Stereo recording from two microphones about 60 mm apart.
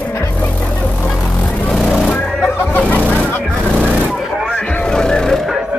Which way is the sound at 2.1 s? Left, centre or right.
Left.